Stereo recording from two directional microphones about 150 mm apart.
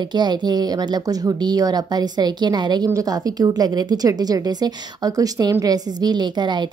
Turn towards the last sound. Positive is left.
turn(degrees=-30)  # may be behind; listen again after turning